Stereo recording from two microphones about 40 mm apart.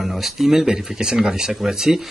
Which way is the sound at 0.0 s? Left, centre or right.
Centre.